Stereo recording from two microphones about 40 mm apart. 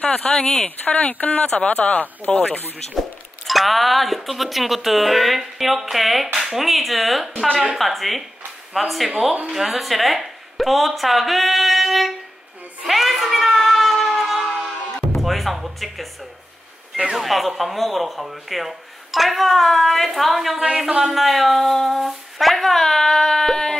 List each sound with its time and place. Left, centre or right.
0.3 s speech: centre
0.7 s speech: left
1.4 s speech: left
1.7 s speech: left
3.0 s a woman's voice: centre
12.8 s a sound: centre
14.9 s music: centre
17.1 s speech: centre
20.5 s speech: centre
21.2 s speech: centre